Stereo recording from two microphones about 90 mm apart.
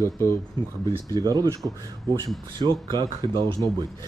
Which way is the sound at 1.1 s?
45° right (ahead or behind).